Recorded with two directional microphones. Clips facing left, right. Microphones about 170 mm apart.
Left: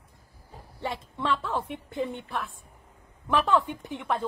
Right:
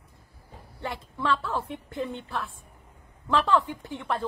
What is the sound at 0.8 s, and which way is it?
A woman's voice, 20° left (ahead or behind).